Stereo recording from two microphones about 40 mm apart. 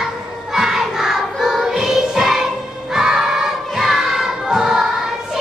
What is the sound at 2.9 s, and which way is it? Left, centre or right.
Crowd, centre.